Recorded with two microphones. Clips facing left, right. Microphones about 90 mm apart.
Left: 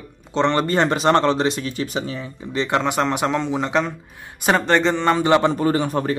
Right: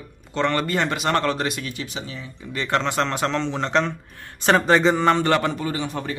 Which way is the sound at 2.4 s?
20° left (ahead or behind).